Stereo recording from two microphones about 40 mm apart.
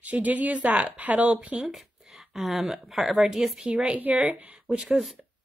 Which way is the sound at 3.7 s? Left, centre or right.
Right.